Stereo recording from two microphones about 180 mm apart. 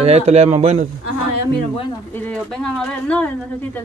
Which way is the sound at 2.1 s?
10° left (ahead or behind).